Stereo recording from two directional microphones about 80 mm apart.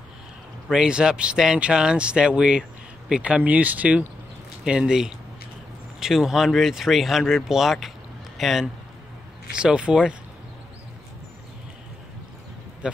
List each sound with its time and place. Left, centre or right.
0.7 s a man's voice: centre
12.8 s speech: centre